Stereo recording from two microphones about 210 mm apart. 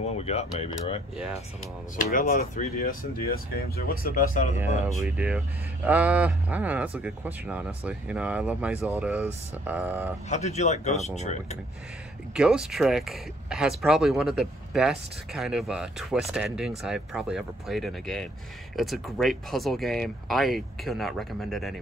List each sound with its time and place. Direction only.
0.2 s speech: 30° left (ahead or behind)
2.0 s speech: 40° left (ahead or behind)
5.0 s speech: 5° right (ahead or behind)
10.3 s speech: 30° left (ahead or behind)
12.4 s speech: 5° right (ahead or behind)